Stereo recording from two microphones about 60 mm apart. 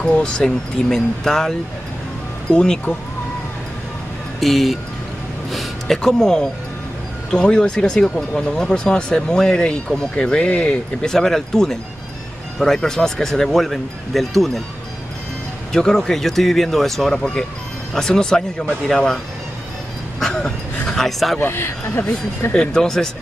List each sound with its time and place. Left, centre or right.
0.0 s speech: centre
2.5 s speech: centre
4.4 s speech: centre
15.7 s speech: centre
20.2 s a sound: centre
21.4 s speech: left
22.5 s speech: centre